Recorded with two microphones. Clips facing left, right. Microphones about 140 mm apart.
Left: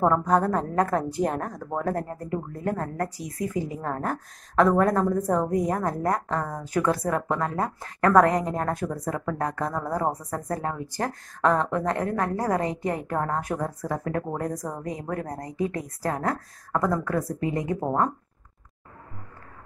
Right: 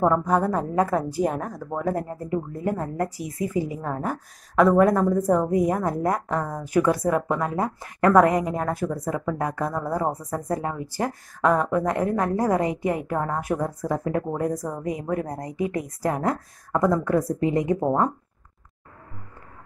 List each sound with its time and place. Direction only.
0.0 s a woman's voice: 5° right (ahead or behind); by 17.7 s 20° right (ahead or behind)